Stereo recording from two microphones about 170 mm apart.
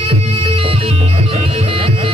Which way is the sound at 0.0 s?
35° right (ahead or behind).